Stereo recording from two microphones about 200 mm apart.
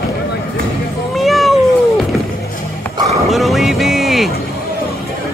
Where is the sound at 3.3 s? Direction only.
Centre (ahead or behind).